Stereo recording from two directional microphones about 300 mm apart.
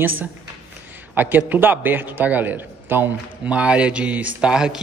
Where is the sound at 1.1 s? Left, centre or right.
Centre.